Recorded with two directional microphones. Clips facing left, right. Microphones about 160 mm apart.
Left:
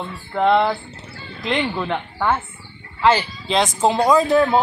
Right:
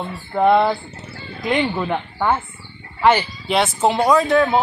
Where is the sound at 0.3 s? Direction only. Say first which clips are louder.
Right 2 dB; 15° right (ahead or behind).